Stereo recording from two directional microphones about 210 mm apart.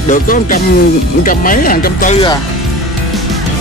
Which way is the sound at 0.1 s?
40° left (ahead or behind).